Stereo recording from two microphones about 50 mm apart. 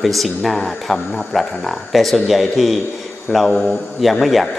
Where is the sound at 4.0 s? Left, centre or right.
Centre.